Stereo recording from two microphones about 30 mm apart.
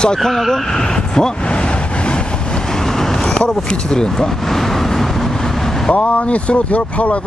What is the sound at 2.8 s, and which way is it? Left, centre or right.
Vehicle, centre.